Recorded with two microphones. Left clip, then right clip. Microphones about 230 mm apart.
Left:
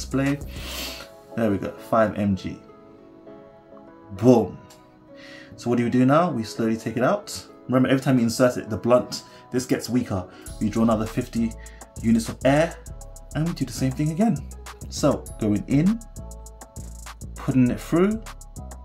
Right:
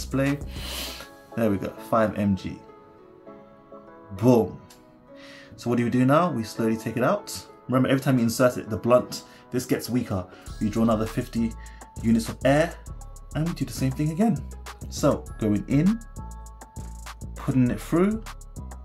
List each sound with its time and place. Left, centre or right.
0.0 s speech: centre
4.1 s speech: centre
16.7 s music: centre